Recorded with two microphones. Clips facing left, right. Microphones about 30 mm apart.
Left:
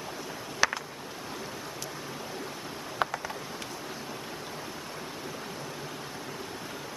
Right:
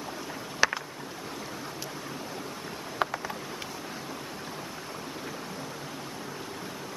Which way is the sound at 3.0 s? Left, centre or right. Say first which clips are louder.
Right 1 dB; centre.